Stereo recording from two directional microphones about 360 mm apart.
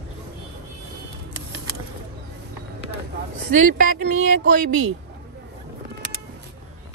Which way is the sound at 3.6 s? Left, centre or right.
Right.